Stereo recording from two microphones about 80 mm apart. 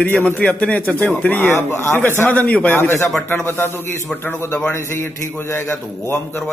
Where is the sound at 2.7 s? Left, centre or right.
Left.